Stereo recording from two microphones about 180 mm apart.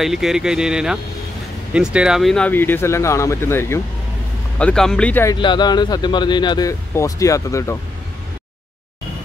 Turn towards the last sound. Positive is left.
turn(degrees=15)  # may be behind; listen again after turning